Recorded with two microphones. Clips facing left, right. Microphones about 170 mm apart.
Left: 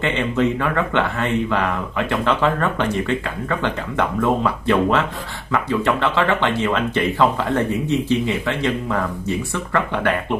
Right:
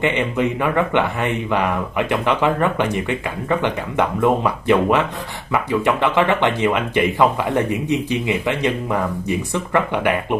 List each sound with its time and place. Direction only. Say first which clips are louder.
0.0 s speech: even; 15° right (ahead or behind)